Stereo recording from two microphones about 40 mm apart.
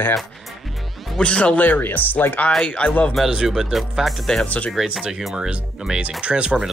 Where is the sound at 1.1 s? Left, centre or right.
Left.